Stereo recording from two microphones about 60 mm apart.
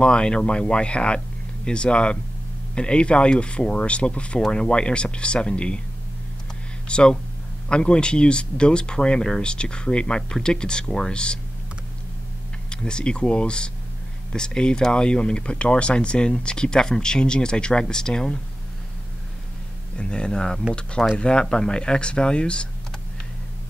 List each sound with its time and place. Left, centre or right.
0.0 s speech: centre
6.9 s speech: centre
12.6 s speech: centre
20.0 s speech: centre